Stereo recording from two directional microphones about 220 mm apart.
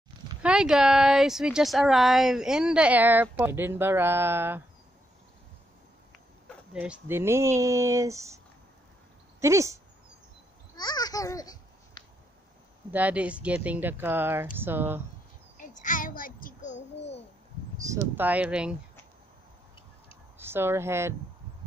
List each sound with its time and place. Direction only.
0.4 s speech: 5° right (ahead or behind)
6.7 s speech: 5° right (ahead or behind)
9.4 s speech: 15° right (ahead or behind)
10.8 s a child's voice: 20° left (ahead or behind)
12.9 s speech: 5° right (ahead or behind)
15.5 s a sound: 35° left (ahead or behind)
18.1 s speech: 5° right (ahead or behind)
20.3 s speech: 10° right (ahead or behind)